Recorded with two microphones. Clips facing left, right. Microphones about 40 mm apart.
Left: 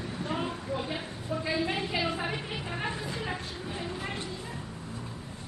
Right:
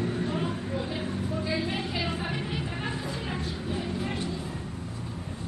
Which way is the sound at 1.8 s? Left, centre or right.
Centre.